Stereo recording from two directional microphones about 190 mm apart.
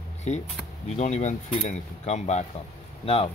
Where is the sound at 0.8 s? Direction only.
35° left (ahead or behind).